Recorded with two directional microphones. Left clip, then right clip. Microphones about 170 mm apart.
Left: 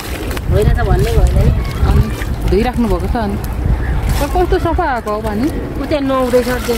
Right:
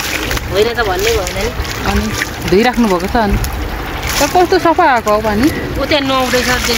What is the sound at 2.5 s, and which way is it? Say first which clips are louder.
Speech: right 4 dB; 40° right (ahead or behind).